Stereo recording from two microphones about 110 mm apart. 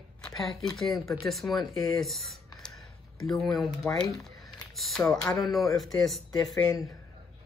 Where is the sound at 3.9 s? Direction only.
Centre (ahead or behind).